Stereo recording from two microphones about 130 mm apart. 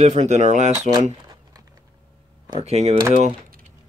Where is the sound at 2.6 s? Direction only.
55° right (ahead or behind).